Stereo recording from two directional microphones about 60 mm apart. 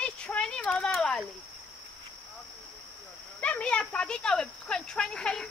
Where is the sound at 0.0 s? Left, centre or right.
Centre.